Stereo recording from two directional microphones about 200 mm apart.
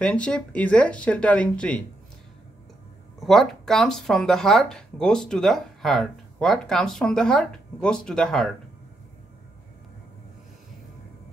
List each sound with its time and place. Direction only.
0.0 s speech: 5° left (ahead or behind)
3.2 s speech: centre (ahead or behind)